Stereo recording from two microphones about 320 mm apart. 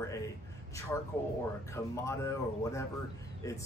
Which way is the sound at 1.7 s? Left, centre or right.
Centre.